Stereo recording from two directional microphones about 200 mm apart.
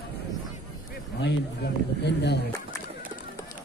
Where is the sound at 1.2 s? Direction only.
55° left (ahead or behind).